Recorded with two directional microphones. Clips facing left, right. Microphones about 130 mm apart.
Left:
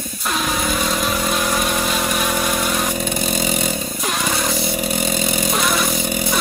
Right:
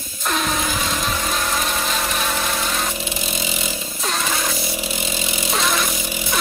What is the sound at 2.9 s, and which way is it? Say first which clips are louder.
Chainsaw: left 6 dB; 50° left (ahead or behind).